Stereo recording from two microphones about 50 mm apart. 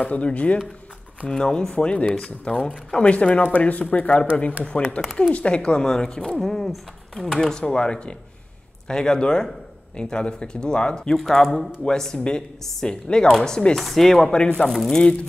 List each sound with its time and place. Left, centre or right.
0.1 s speech: left
1.3 s speech: centre
3.0 s speech: left
11.1 s speech: centre
14.3 s speech: centre